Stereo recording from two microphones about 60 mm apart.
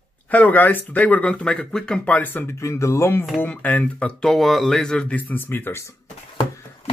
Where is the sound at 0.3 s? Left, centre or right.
Left; by 2.0 s centre.